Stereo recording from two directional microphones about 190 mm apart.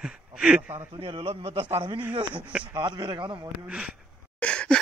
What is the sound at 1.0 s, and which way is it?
A man's voice, 30° right (ahead or behind).